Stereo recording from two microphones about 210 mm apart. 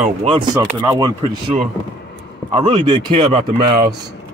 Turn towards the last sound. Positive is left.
turn(degrees=-20)  # may be behind; listen again after turning